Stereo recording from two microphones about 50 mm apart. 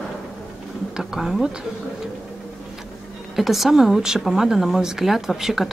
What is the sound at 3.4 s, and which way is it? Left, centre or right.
Speech, centre.